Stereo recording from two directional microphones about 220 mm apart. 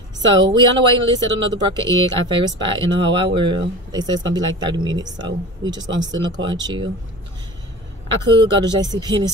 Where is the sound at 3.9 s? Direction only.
20° right (ahead or behind).